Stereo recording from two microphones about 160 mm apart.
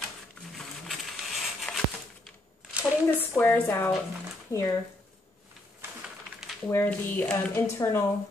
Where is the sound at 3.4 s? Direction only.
15° left (ahead or behind).